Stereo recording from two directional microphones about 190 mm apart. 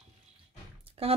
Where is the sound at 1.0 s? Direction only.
30° right (ahead or behind).